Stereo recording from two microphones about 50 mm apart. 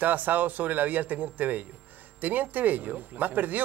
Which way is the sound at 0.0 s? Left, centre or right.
Right.